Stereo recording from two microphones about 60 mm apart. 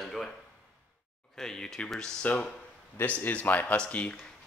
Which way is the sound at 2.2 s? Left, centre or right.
Left.